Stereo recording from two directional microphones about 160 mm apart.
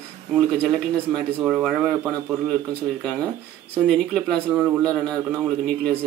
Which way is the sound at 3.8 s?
Centre (ahead or behind).